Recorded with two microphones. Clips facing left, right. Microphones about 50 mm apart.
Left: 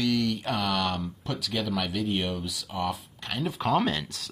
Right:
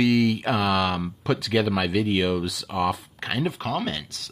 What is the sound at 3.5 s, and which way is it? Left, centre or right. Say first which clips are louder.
Speech: left 2 dB; centre.